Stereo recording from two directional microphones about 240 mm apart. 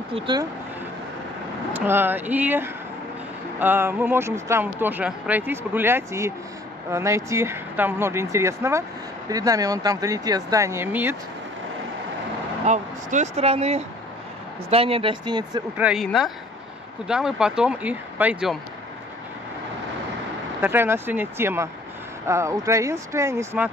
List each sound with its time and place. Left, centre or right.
0.1 s speech: centre
1.7 s speech: centre
12.6 s speech: right
15.8 s speech: centre
20.6 s speech: centre